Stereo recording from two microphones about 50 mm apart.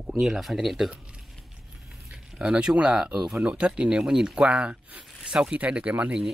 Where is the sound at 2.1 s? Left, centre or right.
Centre.